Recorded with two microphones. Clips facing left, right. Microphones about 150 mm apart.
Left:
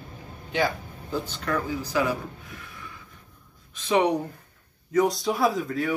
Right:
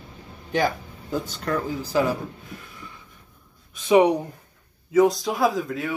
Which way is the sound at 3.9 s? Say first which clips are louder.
Right 5 dB; 10° right (ahead or behind).